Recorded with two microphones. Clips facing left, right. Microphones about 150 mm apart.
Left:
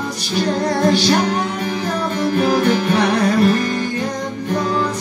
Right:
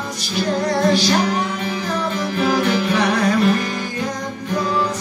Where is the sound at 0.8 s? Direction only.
30° left (ahead or behind).